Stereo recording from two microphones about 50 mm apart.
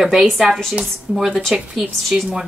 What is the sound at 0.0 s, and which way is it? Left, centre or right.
Speech, centre.